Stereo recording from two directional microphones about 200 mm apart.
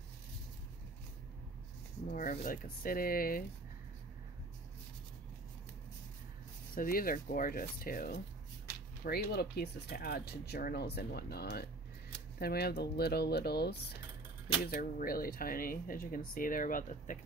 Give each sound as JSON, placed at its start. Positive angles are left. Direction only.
{"t": 2.0, "sound": "speech", "side_deg": 45}
{"t": 6.7, "sound": "speech", "side_deg": 45}